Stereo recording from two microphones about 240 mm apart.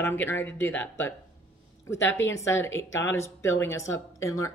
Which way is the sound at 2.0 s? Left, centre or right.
Left.